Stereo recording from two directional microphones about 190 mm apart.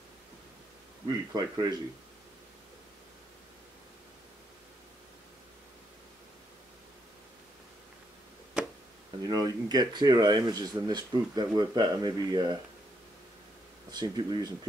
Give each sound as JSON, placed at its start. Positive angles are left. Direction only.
{"t": 1.0, "sound": "speech", "side_deg": -20}
{"t": 9.3, "sound": "speech", "side_deg": -20}
{"t": 13.9, "sound": "speech", "side_deg": -20}